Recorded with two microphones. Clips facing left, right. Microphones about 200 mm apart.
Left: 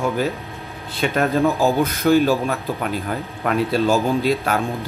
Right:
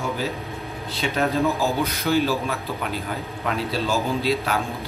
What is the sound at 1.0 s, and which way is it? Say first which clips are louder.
A man's voice: left 4 dB; 55° left (ahead or behind).